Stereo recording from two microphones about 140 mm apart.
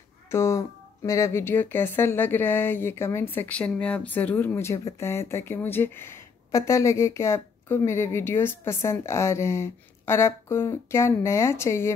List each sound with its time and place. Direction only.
0.3 s speech: 20° left (ahead or behind)